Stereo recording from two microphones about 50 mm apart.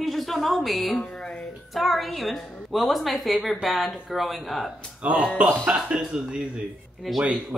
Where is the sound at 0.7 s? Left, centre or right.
Centre.